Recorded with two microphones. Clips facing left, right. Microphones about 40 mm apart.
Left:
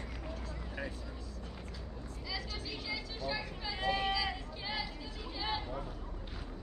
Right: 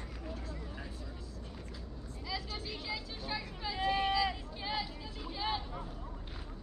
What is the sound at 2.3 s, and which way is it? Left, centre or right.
Vehicle, centre.